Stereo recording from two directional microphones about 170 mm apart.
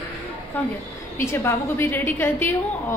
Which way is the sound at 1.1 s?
15° left (ahead or behind).